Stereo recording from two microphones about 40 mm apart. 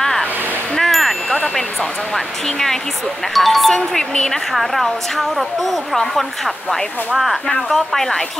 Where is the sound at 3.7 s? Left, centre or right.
Centre.